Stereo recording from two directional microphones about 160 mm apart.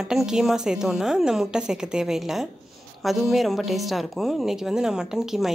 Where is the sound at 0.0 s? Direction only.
5° right (ahead or behind).